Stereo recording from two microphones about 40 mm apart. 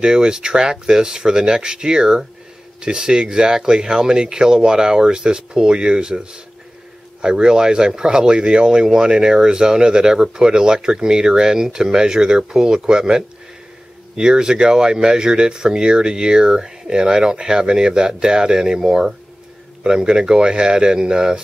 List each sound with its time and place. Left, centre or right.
0.0 s speech: centre